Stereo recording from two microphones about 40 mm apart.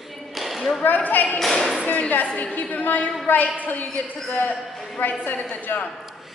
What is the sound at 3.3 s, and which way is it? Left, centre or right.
Speech, left.